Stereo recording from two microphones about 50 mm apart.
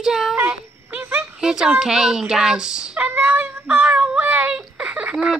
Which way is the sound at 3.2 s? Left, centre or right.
Right.